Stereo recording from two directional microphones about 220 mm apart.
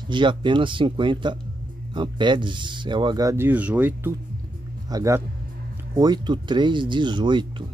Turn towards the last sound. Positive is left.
turn(degrees=-20)  # may be behind; listen again after turning